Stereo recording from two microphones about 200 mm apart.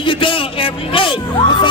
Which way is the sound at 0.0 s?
25° left (ahead or behind).